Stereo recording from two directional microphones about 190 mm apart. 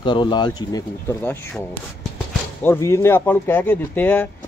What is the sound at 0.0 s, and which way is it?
A man's voice, 25° left (ahead or behind).